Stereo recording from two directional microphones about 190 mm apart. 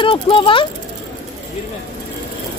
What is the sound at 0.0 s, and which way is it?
Speech, 25° left (ahead or behind).